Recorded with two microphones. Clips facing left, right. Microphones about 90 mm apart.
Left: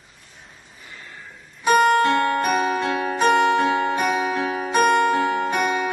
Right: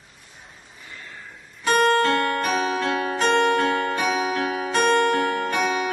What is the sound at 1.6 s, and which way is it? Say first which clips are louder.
Music: left 2 dB; 15° left (ahead or behind).